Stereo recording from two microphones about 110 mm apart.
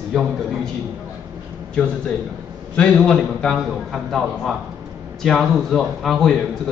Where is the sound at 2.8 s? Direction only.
5° left (ahead or behind).